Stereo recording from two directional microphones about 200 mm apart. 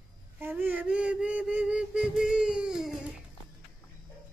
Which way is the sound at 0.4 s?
10° right (ahead or behind).